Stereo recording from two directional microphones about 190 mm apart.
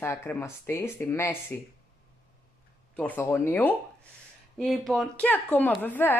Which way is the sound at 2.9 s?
10° left (ahead or behind).